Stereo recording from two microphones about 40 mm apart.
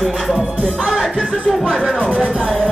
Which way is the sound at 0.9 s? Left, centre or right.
Centre.